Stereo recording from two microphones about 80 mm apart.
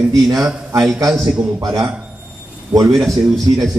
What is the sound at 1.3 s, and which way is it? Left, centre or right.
Speech, right.